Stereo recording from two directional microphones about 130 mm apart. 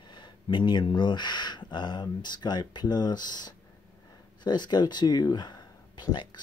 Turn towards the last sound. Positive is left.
turn(degrees=35)  # may be behind; listen again after turning